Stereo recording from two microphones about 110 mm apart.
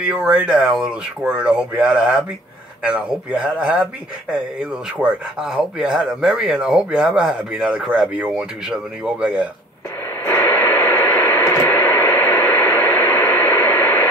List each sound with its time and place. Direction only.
0.1 s speech: 10° right (ahead or behind)
10.2 s radio: 20° left (ahead or behind)